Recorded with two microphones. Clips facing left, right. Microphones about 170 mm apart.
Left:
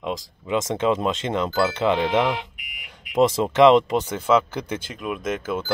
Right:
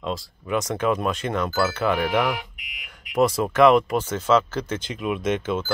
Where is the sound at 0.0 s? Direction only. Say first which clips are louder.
Left 1 dB; 20° left (ahead or behind).